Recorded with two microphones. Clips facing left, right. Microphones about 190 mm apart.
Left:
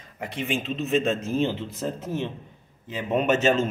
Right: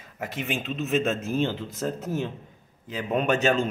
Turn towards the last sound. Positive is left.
turn(degrees=0)  # may be behind; listen again after turning